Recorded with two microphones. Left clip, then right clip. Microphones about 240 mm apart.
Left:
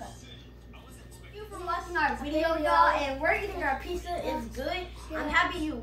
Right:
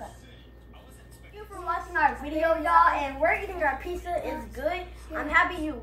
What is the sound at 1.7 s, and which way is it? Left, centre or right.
A woman's voice, centre.